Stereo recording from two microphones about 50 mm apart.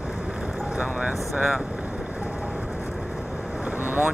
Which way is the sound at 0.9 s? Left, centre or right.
Centre.